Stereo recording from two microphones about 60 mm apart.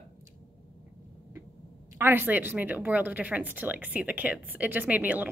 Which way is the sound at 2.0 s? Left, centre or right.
Right.